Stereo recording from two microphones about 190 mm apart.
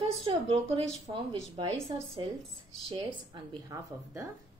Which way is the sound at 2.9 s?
20° right (ahead or behind).